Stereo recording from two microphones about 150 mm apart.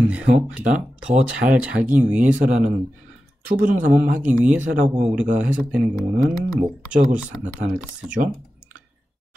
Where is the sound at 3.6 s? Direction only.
60° right (ahead or behind).